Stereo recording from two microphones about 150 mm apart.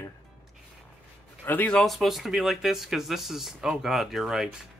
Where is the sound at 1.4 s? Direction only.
10° left (ahead or behind).